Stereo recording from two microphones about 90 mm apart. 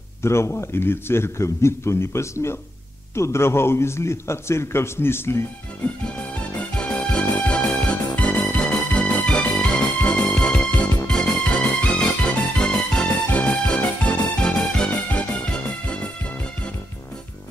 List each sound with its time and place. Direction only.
0.2 s a man's voice: 30° left (ahead or behind)
6.0 s music: 15° left (ahead or behind)
11.1 s music: 10° left (ahead or behind)